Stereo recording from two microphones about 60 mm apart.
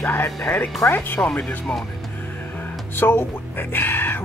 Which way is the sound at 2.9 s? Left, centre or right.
Left.